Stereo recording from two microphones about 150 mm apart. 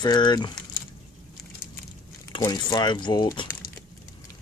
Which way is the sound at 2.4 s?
25° left (ahead or behind).